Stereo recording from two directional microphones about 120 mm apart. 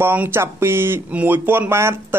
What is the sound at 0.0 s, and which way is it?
Speech, 15° right (ahead or behind).